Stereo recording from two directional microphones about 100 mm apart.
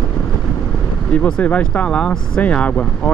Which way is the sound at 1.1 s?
15° left (ahead or behind).